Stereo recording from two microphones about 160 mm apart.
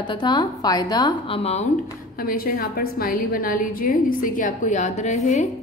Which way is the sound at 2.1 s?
65° left (ahead or behind).